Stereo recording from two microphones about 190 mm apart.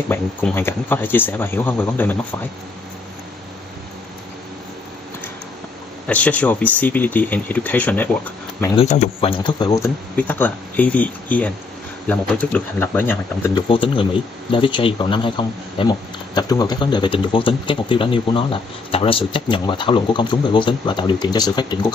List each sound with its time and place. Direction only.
0.1 s speech: 10° left (ahead or behind)
6.0 s speech: 5° left (ahead or behind)
8.7 s speech: 40° left (ahead or behind); by 13.0 s 10° left (ahead or behind)
13.6 s speech: 25° left (ahead or behind)